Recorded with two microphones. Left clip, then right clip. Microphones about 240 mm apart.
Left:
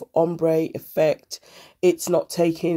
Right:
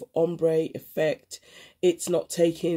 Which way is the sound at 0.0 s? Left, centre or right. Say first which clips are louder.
Left 4 dB; left.